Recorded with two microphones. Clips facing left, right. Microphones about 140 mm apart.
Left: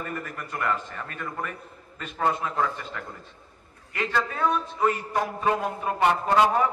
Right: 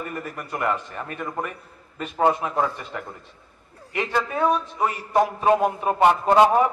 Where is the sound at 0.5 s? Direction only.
20° right (ahead or behind).